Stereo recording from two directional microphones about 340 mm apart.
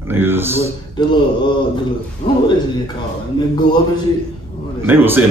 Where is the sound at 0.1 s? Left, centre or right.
Centre.